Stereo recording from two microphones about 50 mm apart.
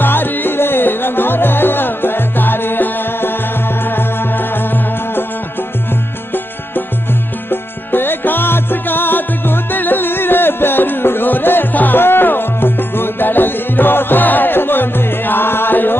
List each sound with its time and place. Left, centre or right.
0.0 s music: left
7.9 s music: left